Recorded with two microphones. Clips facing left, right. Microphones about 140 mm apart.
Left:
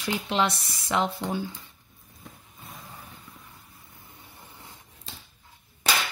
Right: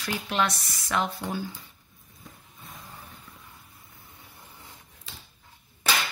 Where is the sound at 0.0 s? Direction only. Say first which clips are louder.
Left 2 dB; 20° left (ahead or behind).